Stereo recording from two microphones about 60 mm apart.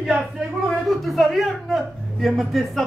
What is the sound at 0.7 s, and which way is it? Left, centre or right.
Speech, centre.